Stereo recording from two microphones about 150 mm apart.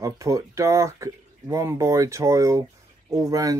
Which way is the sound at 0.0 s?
20° right (ahead or behind).